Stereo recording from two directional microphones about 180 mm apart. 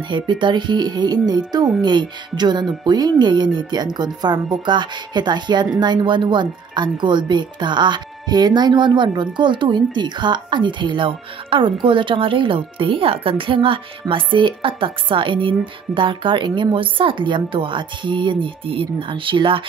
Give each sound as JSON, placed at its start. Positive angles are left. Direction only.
{"t": 0.1, "sound": "speech", "side_deg": -25}